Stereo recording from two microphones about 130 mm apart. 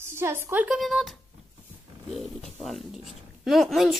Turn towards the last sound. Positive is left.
turn(degrees=0)  # may be behind; listen again after turning